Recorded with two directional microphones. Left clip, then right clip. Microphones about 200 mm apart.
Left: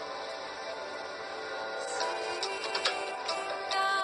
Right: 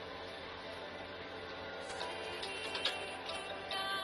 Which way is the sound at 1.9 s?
40° left (ahead or behind).